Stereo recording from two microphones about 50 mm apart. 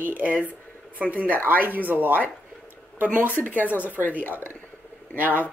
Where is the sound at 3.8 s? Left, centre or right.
Right.